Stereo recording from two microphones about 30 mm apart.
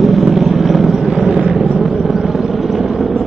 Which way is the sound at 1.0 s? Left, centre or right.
Centre.